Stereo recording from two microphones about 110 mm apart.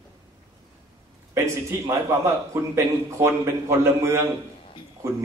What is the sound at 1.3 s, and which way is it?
A man's voice, 25° right (ahead or behind).